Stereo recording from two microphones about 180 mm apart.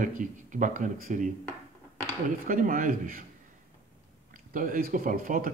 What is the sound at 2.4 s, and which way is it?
Speech, 50° right (ahead or behind).